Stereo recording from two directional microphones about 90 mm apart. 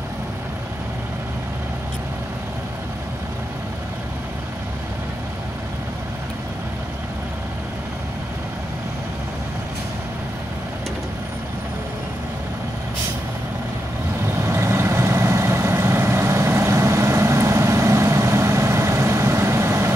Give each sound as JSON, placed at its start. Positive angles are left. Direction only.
{"t": 14.4, "sound": "vehicle", "side_deg": -30}